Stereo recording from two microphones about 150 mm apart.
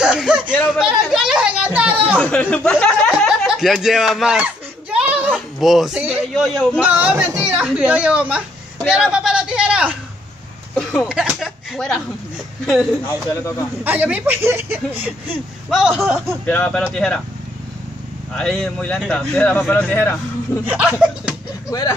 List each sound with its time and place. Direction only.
0.0 s a sound: 5° right (ahead or behind)
2.1 s speech: 10° left (ahead or behind)
4.9 s a sound: 10° right (ahead or behind)
6.3 s a man's voice: centre (ahead or behind)
10.7 s speech: 5° left (ahead or behind)
13.3 s speech: 15° left (ahead or behind)
13.8 s speech: 10° right (ahead or behind)
16.4 s speech: 10° left (ahead or behind)
18.3 s speech: 5° left (ahead or behind)
20.6 s speech: 10° right (ahead or behind)
21.6 s speech: 20° left (ahead or behind)